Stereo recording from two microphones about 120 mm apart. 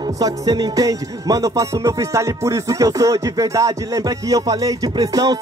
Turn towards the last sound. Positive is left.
turn(degrees=-30)  # may be behind; listen again after turning